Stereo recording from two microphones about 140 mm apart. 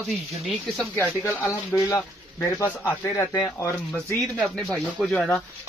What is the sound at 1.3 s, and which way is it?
Speech, 20° left (ahead or behind).